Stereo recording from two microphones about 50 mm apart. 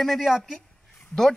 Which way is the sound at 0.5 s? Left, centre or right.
Centre.